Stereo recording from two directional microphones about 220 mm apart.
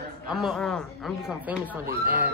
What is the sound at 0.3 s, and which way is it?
A woman's voice, centre (ahead or behind).